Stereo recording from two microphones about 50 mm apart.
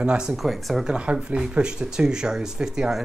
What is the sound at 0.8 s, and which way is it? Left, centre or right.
Speech, right.